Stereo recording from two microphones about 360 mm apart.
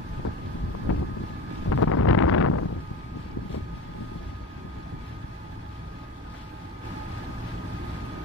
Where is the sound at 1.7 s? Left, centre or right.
Left.